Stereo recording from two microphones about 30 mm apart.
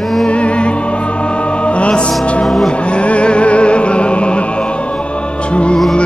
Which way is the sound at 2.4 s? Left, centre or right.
Centre.